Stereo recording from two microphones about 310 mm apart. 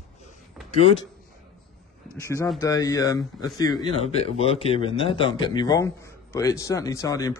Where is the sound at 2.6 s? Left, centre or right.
Centre.